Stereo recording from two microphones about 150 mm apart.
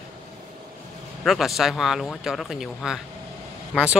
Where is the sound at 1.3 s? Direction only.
Centre (ahead or behind).